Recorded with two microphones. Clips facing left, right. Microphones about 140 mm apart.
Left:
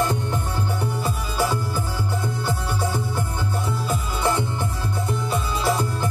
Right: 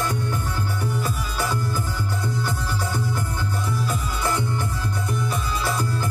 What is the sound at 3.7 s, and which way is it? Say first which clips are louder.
Music: left 1 dB; 20° left (ahead or behind).